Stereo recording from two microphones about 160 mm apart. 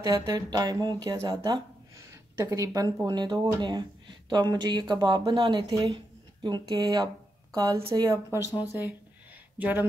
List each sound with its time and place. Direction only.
0.0 s speech: 25° right (ahead or behind)
9.6 s speech: 10° right (ahead or behind)